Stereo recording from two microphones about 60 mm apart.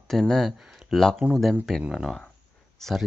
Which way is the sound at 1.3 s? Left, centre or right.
Centre.